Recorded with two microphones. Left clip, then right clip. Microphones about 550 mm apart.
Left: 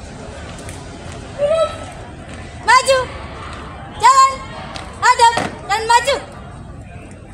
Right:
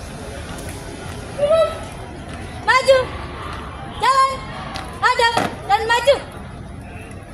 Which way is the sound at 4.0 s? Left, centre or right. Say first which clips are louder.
Left 5 dB; centre.